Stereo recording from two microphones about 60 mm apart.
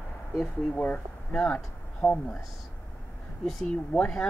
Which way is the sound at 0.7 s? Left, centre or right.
Left.